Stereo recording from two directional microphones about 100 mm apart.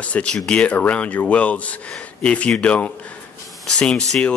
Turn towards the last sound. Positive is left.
turn(degrees=10)  # may be behind; listen again after turning